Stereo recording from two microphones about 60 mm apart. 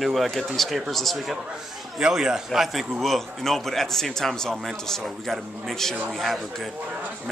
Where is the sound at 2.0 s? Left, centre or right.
Centre.